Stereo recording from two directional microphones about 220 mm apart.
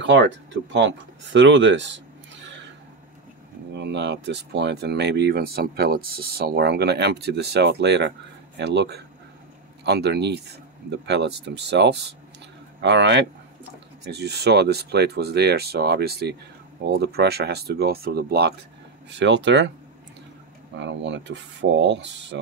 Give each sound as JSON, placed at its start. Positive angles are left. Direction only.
{"t": 0.0, "sound": "speech", "side_deg": -55}
{"t": 0.7, "sound": "a sound", "side_deg": -55}
{"t": 3.7, "sound": "speech", "side_deg": -50}
{"t": 20.8, "sound": "speech", "side_deg": -55}